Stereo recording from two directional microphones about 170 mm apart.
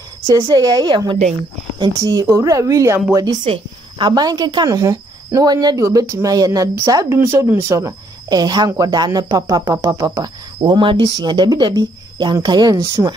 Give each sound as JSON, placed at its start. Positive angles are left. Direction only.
{"t": 0.3, "sound": "speech", "side_deg": -25}